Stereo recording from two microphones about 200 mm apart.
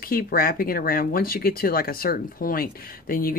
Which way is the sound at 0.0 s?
45° left (ahead or behind).